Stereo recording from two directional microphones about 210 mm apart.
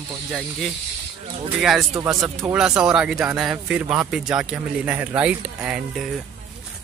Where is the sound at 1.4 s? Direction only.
Centre (ahead or behind).